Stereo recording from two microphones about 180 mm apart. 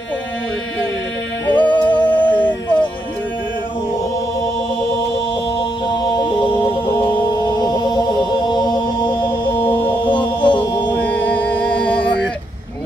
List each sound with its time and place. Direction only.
1.5 s music: 10° left (ahead or behind)
6.2 s chant: 30° left (ahead or behind)
9.7 s music: 10° left (ahead or behind)
10.1 s music: 25° left (ahead or behind)
10.9 s music: 10° left (ahead or behind)